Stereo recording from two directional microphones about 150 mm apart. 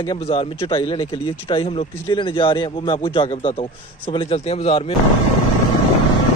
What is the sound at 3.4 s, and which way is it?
Speech, 50° left (ahead or behind).